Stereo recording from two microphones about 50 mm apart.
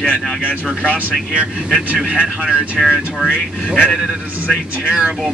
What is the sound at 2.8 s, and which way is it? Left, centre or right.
Speech, centre.